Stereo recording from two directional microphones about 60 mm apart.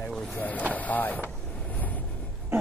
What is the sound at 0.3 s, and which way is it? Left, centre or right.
Speech, left.